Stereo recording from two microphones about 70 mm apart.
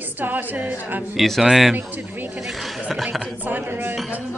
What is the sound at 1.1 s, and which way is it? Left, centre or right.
Speech, centre.